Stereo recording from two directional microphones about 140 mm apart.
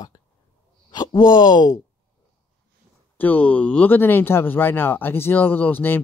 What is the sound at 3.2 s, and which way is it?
Speech, 10° left (ahead or behind).